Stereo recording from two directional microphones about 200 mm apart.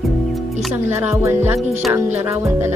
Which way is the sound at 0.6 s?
5° right (ahead or behind).